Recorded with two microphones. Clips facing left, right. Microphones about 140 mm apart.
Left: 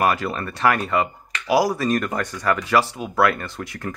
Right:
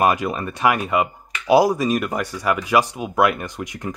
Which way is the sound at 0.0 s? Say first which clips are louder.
Right 2 dB; 15° right (ahead or behind).